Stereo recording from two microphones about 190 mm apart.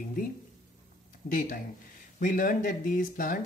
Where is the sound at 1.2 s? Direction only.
50° left (ahead or behind).